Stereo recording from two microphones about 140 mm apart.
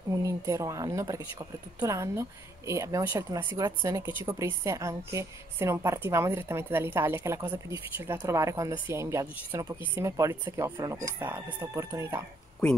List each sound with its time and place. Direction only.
0.1 s a woman's voice: 20° right (ahead or behind)